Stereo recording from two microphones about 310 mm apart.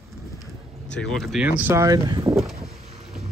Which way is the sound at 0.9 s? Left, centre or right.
Centre.